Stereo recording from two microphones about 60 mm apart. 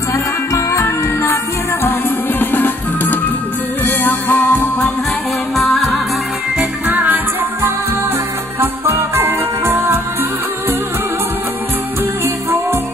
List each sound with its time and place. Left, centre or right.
0.5 s music: left
5.6 s music: centre
6.9 s music: right
8.5 s music: right